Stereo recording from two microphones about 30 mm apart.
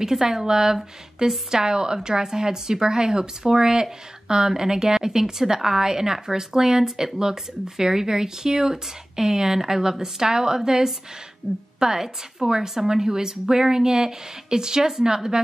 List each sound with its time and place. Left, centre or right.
0.0 s a woman's voice: centre